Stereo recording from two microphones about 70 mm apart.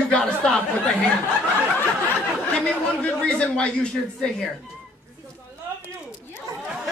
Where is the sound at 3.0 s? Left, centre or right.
Centre.